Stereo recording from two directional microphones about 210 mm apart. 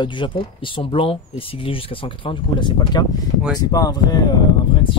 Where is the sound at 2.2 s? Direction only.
20° left (ahead or behind).